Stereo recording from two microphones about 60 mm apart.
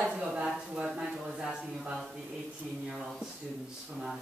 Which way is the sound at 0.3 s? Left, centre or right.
Centre.